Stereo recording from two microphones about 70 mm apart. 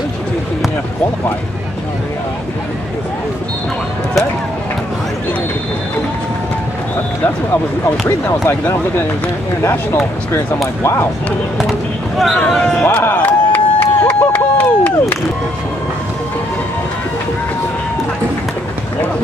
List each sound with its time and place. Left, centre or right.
8.3 s speech: left
10.8 s speech: left
12.4 s speech: centre
13.1 s crowd: left